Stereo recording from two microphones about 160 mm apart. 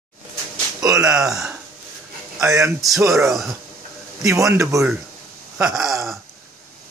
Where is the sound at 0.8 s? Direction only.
20° right (ahead or behind).